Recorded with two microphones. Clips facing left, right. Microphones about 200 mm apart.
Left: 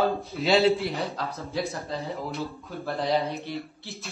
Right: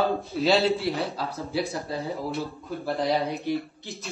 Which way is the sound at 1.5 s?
15° right (ahead or behind).